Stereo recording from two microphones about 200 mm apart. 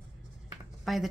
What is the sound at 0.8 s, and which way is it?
Speech, centre (ahead or behind).